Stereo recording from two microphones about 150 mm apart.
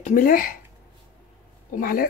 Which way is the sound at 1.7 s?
70° left (ahead or behind).